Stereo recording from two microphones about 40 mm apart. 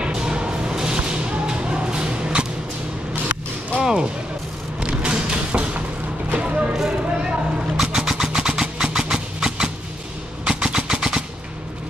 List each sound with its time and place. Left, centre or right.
0.0 s music: right
3.8 s music: right
4.7 s a sound: right
6.3 s music: right
6.7 s vehicle: centre